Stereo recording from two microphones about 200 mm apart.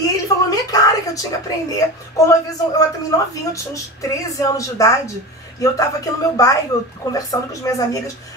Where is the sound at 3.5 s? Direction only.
15° left (ahead or behind).